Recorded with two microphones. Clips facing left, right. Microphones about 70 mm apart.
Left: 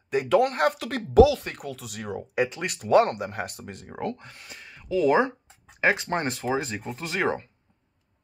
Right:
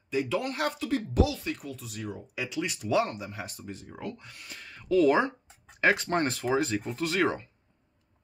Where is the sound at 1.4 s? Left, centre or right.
Left.